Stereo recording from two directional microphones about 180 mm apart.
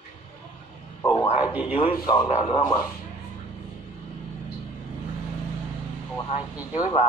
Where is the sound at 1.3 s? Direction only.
10° right (ahead or behind).